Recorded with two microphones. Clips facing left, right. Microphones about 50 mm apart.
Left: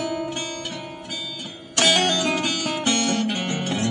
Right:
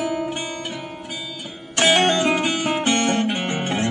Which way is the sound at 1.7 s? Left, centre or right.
Right.